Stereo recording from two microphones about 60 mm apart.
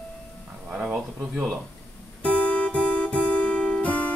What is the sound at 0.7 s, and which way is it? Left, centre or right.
Speech, centre.